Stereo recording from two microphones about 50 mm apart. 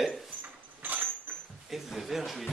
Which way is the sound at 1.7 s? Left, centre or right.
Centre.